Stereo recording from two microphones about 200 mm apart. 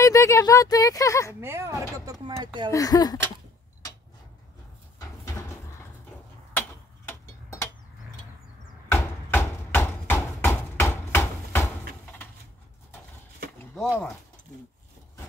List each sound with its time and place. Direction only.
0.0 s speech: 15° left (ahead or behind)
1.4 s speech: 10° right (ahead or behind)
2.7 s speech: 20° left (ahead or behind)
7.1 s a sound: 15° left (ahead or behind)
8.9 s a sound: 15° left (ahead or behind)
13.7 s speech: 5° right (ahead or behind)